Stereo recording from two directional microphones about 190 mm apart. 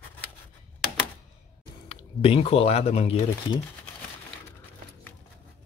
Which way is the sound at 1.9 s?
30° left (ahead or behind).